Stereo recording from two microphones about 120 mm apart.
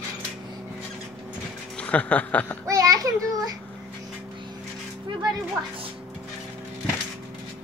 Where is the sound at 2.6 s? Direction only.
30° right (ahead or behind).